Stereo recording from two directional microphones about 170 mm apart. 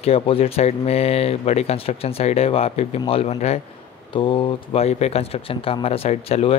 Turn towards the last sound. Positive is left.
turn(degrees=35)  # may be behind; listen again after turning